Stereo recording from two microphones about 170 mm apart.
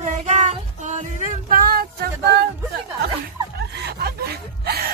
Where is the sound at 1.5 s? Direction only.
60° right (ahead or behind).